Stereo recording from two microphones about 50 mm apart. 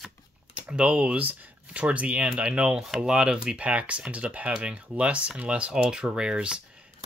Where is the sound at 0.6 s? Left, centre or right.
Right.